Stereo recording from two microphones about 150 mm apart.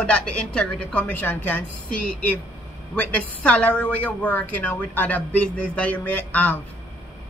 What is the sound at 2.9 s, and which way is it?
A woman's voice, 10° left (ahead or behind).